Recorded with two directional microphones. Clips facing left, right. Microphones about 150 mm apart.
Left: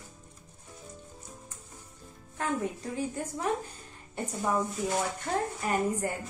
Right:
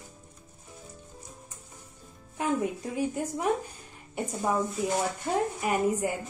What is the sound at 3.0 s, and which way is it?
Speech, 15° right (ahead or behind).